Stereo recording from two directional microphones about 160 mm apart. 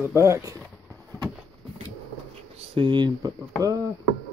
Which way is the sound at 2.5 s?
35° right (ahead or behind).